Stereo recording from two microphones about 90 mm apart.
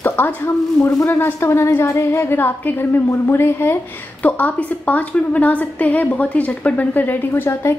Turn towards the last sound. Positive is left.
turn(degrees=20)  # may be behind; listen again after turning